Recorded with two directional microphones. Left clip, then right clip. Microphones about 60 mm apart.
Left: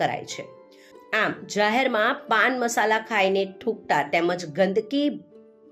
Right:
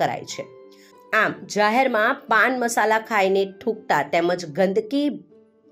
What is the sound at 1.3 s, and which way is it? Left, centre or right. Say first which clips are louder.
Speech: right 3 dB; centre.